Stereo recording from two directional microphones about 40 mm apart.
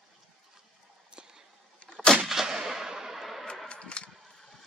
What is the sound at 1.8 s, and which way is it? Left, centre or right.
Artillery fire, left.